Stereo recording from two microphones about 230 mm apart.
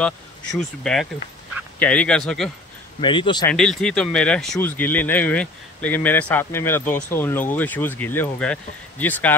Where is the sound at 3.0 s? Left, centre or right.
Left.